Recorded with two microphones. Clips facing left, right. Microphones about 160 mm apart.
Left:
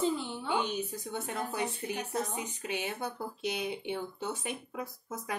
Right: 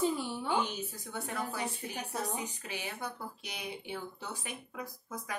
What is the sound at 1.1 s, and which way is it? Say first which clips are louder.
Speech: left 2 dB; 20° left (ahead or behind).